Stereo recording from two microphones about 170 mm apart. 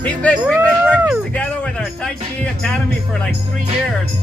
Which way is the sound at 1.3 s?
5° left (ahead or behind).